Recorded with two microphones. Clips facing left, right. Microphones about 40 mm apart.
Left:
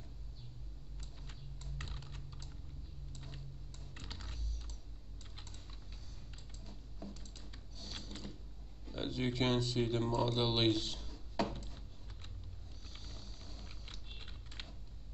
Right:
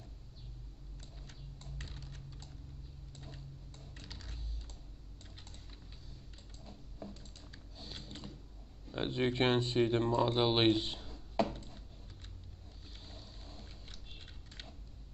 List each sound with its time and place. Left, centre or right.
1.8 s typing: left
6.7 s typing: centre
7.7 s a sound: right
8.9 s speech: right
13.0 s a sound: right
13.8 s typing: left